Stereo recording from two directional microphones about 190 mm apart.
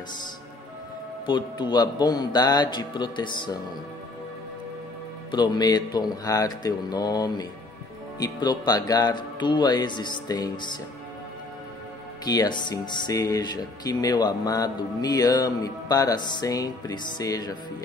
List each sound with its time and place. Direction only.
1.2 s speech: 25° left (ahead or behind)
5.3 s speech: 25° left (ahead or behind)
12.3 s speech: 20° left (ahead or behind)